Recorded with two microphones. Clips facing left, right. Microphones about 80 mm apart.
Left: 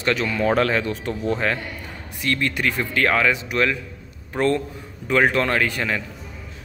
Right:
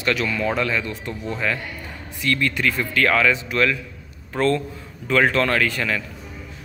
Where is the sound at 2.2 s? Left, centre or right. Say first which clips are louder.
Right 1 dB; left.